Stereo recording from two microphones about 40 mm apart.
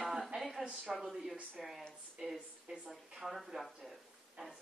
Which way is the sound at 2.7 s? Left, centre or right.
Centre.